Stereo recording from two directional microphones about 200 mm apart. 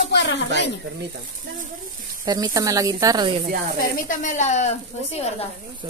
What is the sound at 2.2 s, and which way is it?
Speech, 20° right (ahead or behind).